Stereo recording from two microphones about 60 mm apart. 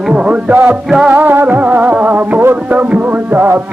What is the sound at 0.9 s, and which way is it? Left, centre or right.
Music, right.